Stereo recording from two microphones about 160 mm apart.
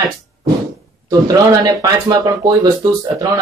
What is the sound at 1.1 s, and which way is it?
A man's voice, 20° right (ahead or behind).